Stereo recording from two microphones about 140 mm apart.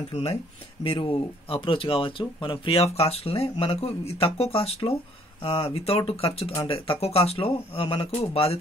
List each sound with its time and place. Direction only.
0.1 s speech: 45° left (ahead or behind)